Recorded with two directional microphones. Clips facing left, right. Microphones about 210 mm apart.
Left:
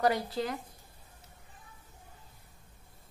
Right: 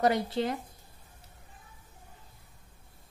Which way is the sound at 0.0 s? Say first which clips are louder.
Right 2 dB; 25° right (ahead or behind).